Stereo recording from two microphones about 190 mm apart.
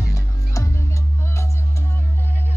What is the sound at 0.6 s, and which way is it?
Music, 15° left (ahead or behind).